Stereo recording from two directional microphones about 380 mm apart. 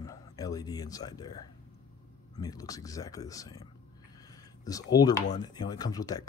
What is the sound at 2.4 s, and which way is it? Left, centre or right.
Speech, centre.